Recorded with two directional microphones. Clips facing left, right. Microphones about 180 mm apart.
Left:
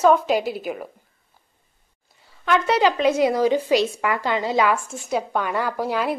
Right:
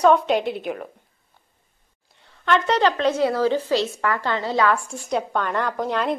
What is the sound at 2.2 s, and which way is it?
A woman's voice, 5° left (ahead or behind).